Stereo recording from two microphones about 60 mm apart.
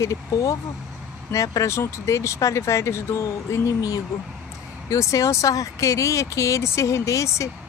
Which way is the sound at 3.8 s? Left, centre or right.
Left.